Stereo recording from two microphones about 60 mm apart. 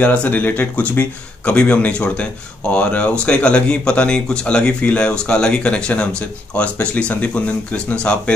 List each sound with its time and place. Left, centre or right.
0.0 s speech: left